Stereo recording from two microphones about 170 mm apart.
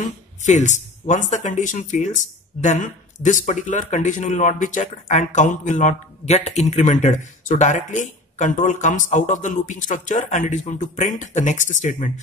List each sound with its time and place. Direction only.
0.4 s speech: 45° left (ahead or behind)